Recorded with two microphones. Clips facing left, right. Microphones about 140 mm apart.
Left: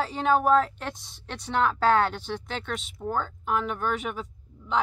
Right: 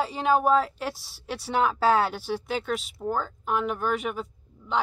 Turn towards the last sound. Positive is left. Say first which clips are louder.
# even
turn(degrees=0)  # may be behind; listen again after turning